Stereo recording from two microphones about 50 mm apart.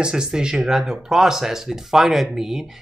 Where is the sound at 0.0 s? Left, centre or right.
Centre.